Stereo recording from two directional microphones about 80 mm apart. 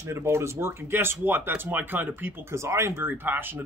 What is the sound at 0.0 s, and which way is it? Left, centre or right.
Speech, right.